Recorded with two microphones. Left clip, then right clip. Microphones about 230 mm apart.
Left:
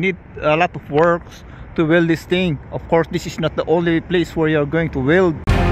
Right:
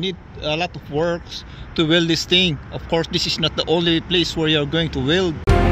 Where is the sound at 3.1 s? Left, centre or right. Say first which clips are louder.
Right 5 dB; left.